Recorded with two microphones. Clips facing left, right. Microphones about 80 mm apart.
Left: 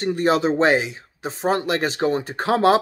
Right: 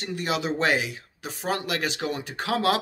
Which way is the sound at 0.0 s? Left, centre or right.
Left.